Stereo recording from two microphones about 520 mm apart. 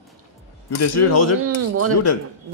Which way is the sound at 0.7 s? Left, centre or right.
Left.